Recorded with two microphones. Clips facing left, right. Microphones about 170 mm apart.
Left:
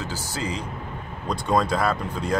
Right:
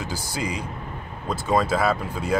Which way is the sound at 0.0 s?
15° right (ahead or behind).